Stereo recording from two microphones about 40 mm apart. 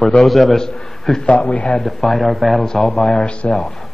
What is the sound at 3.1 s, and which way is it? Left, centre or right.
Speech, left.